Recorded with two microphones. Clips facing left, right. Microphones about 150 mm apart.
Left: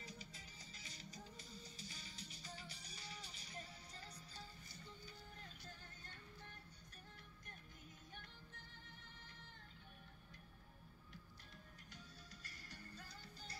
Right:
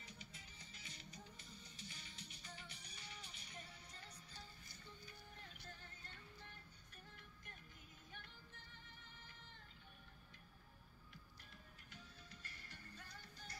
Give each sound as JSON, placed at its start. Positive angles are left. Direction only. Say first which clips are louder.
{"t": 0.0, "sound": "music", "louder": "left 3 dB", "side_deg": 35}
{"t": 12.3, "sound": "music", "louder": "left 1 dB", "side_deg": 40}